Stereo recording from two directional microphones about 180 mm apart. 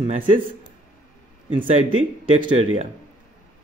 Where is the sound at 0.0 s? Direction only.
30° right (ahead or behind).